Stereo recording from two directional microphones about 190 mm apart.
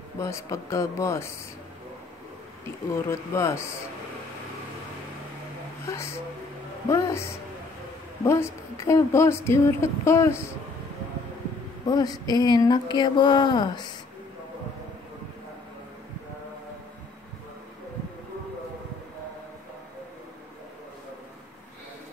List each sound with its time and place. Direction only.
0.2 s a woman's voice: 15° left (ahead or behind)
3.1 s a woman's voice: 15° left (ahead or behind)
5.9 s a woman's voice: 15° left (ahead or behind)
11.8 s a sound: 20° left (ahead or behind)